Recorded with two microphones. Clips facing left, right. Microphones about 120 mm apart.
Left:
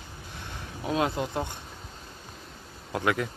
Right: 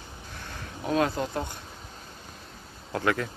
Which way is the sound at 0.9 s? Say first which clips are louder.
Right 1 dB; 20° left (ahead or behind).